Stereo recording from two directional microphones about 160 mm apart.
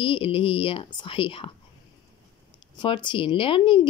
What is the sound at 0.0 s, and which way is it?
Speech, 35° left (ahead or behind).